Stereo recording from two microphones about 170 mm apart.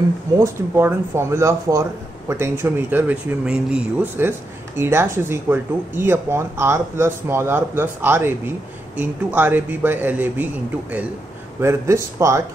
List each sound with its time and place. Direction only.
0.4 s speech: 15° right (ahead or behind)